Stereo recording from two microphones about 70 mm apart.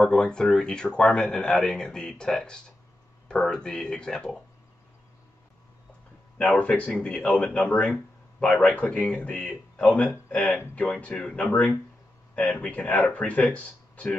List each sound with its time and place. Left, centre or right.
0.0 s a man's voice: centre
6.3 s a man's voice: centre